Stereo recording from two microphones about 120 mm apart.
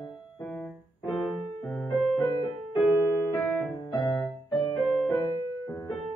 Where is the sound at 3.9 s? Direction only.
Centre (ahead or behind).